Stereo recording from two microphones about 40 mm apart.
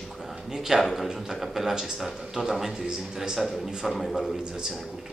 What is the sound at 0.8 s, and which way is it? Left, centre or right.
Speech, centre.